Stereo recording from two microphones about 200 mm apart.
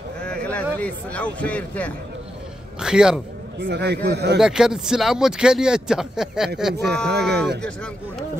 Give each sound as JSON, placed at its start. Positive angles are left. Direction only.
{"t": 0.2, "sound": "a sound", "side_deg": 5}
{"t": 2.8, "sound": "speech", "side_deg": -5}
{"t": 3.5, "sound": "a man's voice", "side_deg": -60}
{"t": 4.4, "sound": "speech", "side_deg": -5}
{"t": 6.9, "sound": "a man's voice", "side_deg": -55}
{"t": 7.4, "sound": "speech", "side_deg": 5}